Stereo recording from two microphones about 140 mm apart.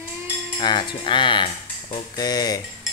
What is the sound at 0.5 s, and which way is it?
Speech, 35° left (ahead or behind).